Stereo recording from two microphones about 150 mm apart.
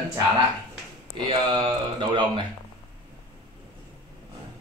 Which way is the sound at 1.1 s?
35° right (ahead or behind).